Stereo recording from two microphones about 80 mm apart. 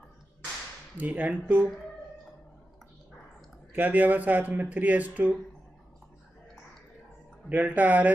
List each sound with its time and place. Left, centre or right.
0.9 s speech: centre
3.7 s speech: right
7.4 s speech: centre